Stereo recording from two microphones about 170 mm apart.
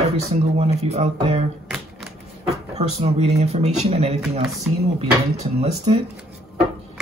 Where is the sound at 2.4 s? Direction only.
40° right (ahead or behind).